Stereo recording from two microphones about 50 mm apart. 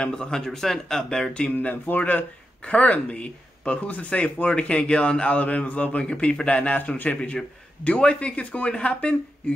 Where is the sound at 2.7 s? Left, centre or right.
Left.